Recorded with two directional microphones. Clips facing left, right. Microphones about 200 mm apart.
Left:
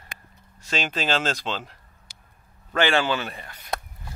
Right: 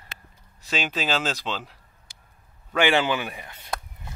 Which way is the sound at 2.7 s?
15° right (ahead or behind).